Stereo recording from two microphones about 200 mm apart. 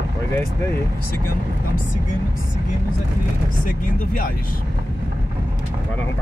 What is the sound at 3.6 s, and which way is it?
Speech, 45° left (ahead or behind).